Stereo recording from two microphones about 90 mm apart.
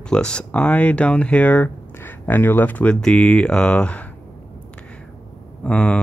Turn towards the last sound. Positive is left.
turn(degrees=15)  # may be behind; listen again after turning